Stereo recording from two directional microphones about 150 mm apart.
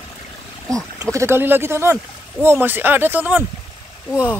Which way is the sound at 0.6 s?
20° right (ahead or behind).